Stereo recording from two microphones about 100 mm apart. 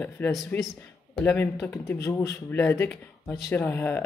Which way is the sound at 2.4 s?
20° left (ahead or behind).